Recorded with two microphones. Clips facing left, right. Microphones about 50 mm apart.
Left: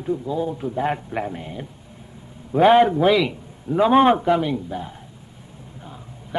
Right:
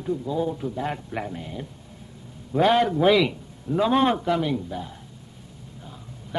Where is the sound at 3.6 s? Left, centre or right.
Centre.